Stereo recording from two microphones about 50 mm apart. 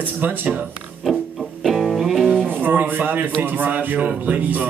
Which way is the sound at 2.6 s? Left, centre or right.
Right.